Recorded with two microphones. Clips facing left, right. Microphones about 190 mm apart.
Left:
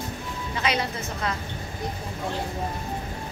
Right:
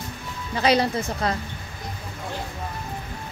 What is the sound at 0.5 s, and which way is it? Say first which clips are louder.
Speech: right 7 dB; 35° right (ahead or behind).